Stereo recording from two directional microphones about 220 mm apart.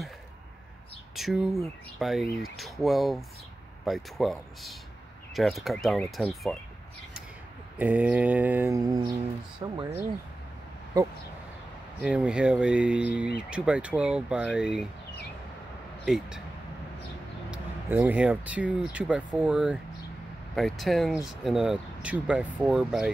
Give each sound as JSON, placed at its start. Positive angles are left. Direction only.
{"t": 1.1, "sound": "speech", "side_deg": 0}
{"t": 7.7, "sound": "mantra", "side_deg": -5}
{"t": 9.6, "sound": "speech", "side_deg": -20}
{"t": 12.0, "sound": "speech", "side_deg": -5}
{"t": 16.1, "sound": "speech", "side_deg": -5}
{"t": 17.5, "sound": "speech", "side_deg": -5}